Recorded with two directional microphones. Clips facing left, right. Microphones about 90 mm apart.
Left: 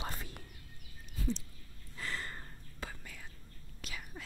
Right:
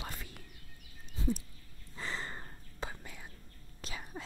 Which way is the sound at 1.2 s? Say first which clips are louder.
Right 3 dB; 25° right (ahead or behind).